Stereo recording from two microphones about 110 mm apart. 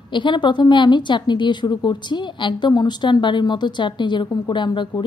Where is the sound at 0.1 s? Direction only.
45° left (ahead or behind).